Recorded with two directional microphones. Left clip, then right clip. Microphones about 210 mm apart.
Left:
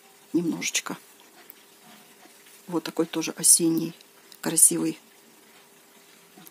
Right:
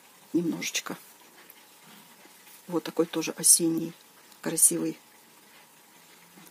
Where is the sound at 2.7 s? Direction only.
10° left (ahead or behind).